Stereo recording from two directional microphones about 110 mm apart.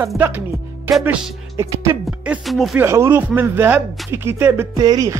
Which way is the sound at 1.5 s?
30° right (ahead or behind).